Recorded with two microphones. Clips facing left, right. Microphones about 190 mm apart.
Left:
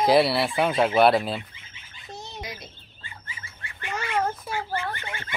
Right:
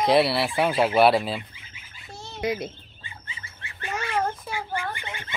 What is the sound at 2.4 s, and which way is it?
Speech, 60° right (ahead or behind).